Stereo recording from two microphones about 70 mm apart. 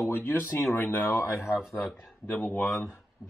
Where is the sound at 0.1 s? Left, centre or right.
Left.